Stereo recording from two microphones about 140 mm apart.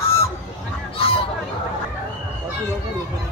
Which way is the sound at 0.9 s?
40° left (ahead or behind).